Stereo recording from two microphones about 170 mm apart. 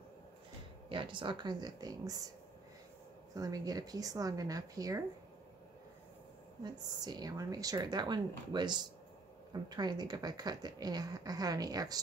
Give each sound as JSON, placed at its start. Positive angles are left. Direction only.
{"t": 0.8, "sound": "a woman's voice", "side_deg": -30}
{"t": 3.3, "sound": "a woman's voice", "side_deg": -20}
{"t": 6.6, "sound": "a woman's voice", "side_deg": -25}